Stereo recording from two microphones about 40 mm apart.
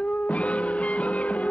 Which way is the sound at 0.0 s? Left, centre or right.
Left.